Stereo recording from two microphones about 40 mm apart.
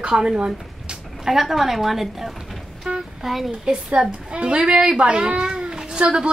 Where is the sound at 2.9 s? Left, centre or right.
Right.